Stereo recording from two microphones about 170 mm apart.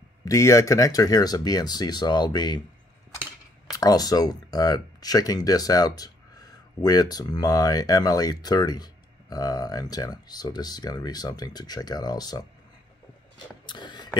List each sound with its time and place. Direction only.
0.2 s speech: 20° left (ahead or behind)
3.7 s speech: 20° left (ahead or behind)
13.7 s a sound: 25° left (ahead or behind)